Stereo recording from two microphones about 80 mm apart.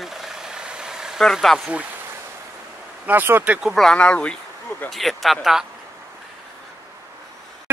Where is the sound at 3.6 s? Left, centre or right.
Centre.